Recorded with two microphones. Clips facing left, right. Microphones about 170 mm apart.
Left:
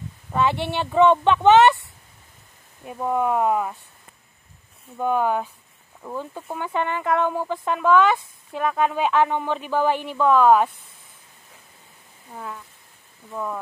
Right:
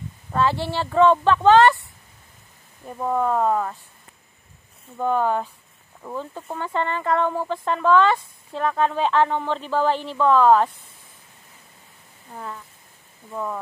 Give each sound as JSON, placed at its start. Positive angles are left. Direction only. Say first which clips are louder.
{"t": 0.4, "sound": "speech", "louder": "even", "side_deg": 20}
{"t": 2.8, "sound": "speech", "louder": "even", "side_deg": 10}
{"t": 4.9, "sound": "speech", "louder": "even", "side_deg": 10}
{"t": 12.3, "sound": "speech", "louder": "even", "side_deg": 0}